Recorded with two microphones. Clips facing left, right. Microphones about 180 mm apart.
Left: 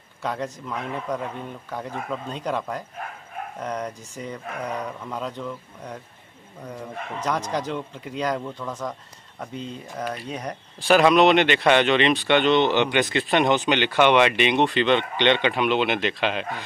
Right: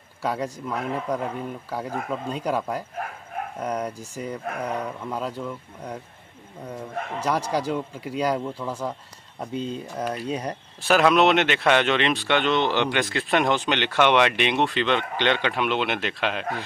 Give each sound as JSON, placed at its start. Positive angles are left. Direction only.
{"t": 0.2, "sound": "speech", "side_deg": -10}
{"t": 7.2, "sound": "speech", "side_deg": -10}
{"t": 9.6, "sound": "speech", "side_deg": -30}
{"t": 10.8, "sound": "speech", "side_deg": 0}